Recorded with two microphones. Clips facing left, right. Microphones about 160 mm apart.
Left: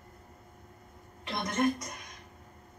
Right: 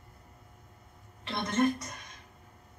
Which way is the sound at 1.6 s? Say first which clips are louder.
Right 1 dB; 15° left (ahead or behind).